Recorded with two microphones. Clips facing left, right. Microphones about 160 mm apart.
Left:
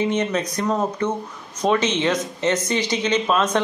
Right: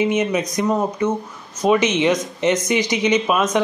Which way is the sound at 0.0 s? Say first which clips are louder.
Right 3 dB; 10° right (ahead or behind).